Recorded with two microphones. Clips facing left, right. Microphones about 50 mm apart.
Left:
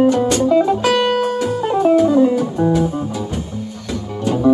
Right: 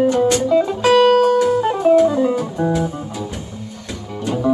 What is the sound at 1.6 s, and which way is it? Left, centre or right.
Music, centre.